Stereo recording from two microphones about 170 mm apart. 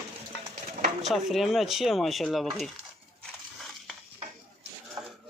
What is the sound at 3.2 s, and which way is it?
Crushing, 5° left (ahead or behind).